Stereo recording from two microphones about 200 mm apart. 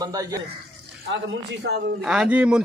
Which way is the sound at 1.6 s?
55° right (ahead or behind).